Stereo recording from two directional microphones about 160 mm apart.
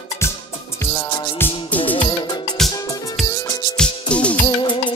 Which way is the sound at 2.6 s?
Centre (ahead or behind).